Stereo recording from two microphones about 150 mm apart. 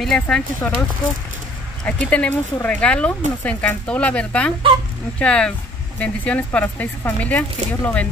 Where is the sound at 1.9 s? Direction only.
10° left (ahead or behind).